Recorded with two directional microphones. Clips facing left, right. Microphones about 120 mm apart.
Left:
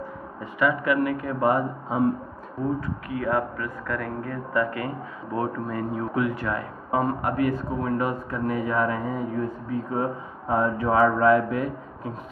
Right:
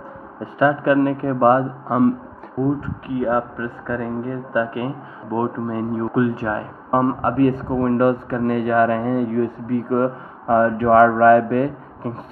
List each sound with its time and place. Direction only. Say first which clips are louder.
0.4 s speech: right 6 dB; 35° right (ahead or behind); by 2.1 s 65° right (ahead or behind)
3.1 s speech: right 6 dB; 25° right (ahead or behind); by 12.2 s 55° right (ahead or behind)